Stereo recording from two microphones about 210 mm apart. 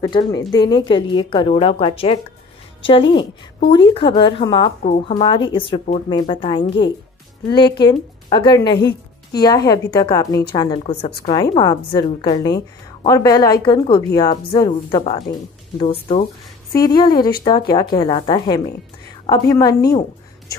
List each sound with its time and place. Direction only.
0.0 s a woman's voice: 20° left (ahead or behind)
4.8 s speech: 35° left (ahead or behind)
5.1 s a woman's voice: 20° left (ahead or behind)